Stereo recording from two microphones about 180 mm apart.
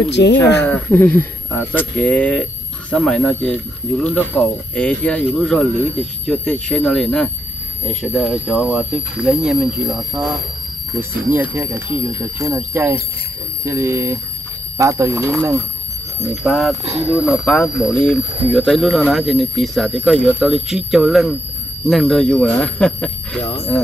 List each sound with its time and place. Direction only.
0.1 s speech: 75° left (ahead or behind)
0.7 s speech: 10° left (ahead or behind)
11.3 s speech: 10° right (ahead or behind)
13.7 s speech: 15° right (ahead or behind)
16.4 s speech: centre (ahead or behind)
16.8 s speech: 35° right (ahead or behind)
17.1 s speech: 5° right (ahead or behind)
17.5 s speech: 10° left (ahead or behind)
23.4 s speech: 35° left (ahead or behind)